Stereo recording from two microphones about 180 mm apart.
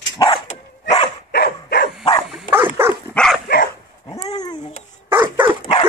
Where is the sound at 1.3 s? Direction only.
60° left (ahead or behind).